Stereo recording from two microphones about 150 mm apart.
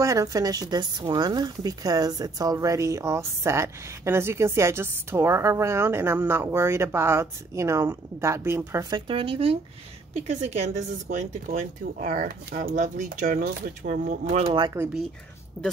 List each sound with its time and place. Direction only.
0.0 s speech: 20° right (ahead or behind)
8.9 s speech: 35° right (ahead or behind)
10.1 s speech: 50° right (ahead or behind); by 12.6 s 65° right (ahead or behind)
12.6 s speech: 55° right (ahead or behind)
14.2 s speech: 40° right (ahead or behind)